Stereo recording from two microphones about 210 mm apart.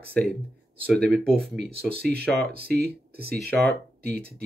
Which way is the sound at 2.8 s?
50° right (ahead or behind).